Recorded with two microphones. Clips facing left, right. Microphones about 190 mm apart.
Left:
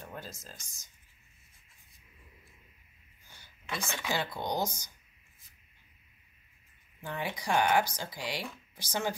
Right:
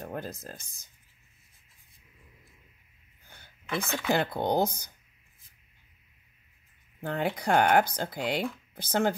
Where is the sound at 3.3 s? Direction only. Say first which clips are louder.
Right 4 dB; 55° right (ahead or behind).